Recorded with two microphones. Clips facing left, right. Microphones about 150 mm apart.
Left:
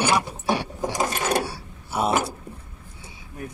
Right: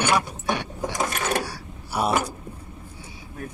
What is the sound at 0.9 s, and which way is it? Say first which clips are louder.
Gears: left 2 dB; 20° left (ahead or behind).